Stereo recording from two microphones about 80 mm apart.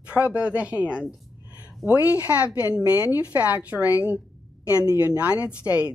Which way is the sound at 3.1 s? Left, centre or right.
Right.